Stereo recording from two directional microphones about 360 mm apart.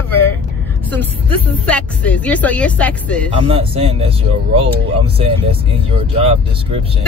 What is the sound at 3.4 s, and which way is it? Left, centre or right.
Speech, centre.